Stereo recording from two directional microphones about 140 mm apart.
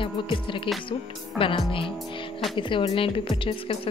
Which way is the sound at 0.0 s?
35° left (ahead or behind).